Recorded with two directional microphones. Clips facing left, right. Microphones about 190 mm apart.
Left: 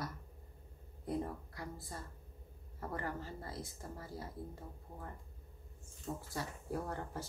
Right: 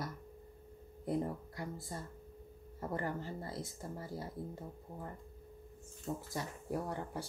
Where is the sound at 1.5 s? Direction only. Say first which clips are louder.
Right 3 dB; 25° right (ahead or behind).